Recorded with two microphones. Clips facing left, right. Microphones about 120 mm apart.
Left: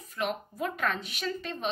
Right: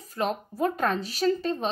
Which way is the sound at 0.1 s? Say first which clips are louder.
Right 4 dB; 35° right (ahead or behind).